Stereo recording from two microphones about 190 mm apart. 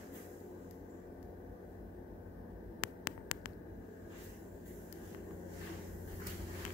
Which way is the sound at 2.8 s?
45° left (ahead or behind).